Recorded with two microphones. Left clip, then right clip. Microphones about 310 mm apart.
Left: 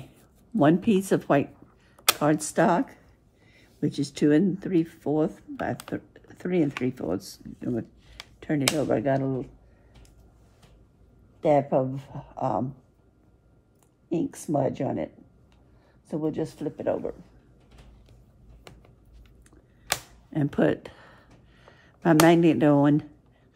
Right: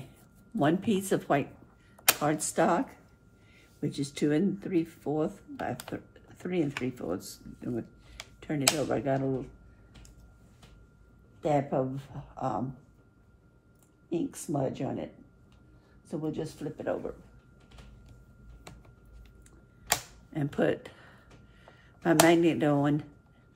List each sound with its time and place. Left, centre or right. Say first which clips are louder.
0.6 s speech: left 6 dB; left
3.8 s speech: left 6 dB; left
8.4 s a sound: left 6 dB; left
8.7 s speech: left 5 dB; left
11.4 s speech: left 6 dB; left
14.0 s speech: left 4 dB; left
16.1 s speech: left 6 dB; left
20.3 s speech: left 4 dB; left